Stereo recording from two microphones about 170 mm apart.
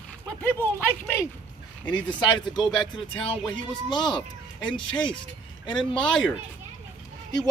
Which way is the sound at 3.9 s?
25° left (ahead or behind).